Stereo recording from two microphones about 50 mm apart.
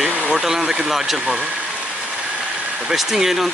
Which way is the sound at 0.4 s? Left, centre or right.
Centre.